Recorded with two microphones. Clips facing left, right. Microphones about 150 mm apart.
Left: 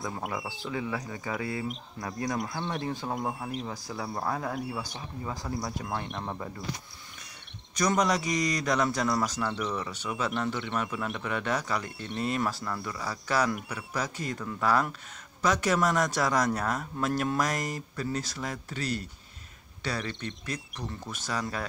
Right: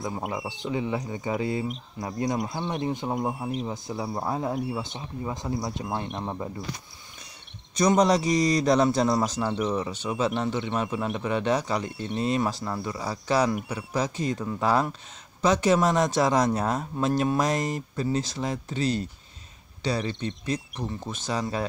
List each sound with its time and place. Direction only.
0.2 s speech: centre (ahead or behind)
0.5 s speech: 20° right (ahead or behind)
3.2 s speech: centre (ahead or behind)
3.6 s speech: 20° right (ahead or behind)
5.5 s speech: centre (ahead or behind)
7.7 s speech: 25° right (ahead or behind)
11.9 s speech: centre (ahead or behind)
12.2 s speech: 20° right (ahead or behind)